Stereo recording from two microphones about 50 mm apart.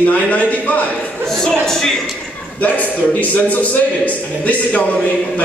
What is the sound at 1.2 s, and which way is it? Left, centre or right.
Speech, centre.